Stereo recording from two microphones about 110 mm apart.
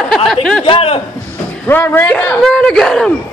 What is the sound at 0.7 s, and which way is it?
Speech, 60° left (ahead or behind).